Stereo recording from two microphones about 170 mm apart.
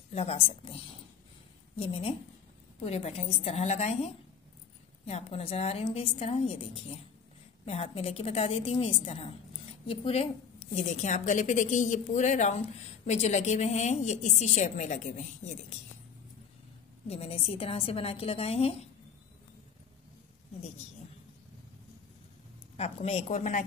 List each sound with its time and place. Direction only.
0.1 s a woman's voice: 35° left (ahead or behind)
1.8 s a woman's voice: 35° left (ahead or behind)
17.1 s a woman's voice: 35° left (ahead or behind)
22.8 s a woman's voice: 40° left (ahead or behind)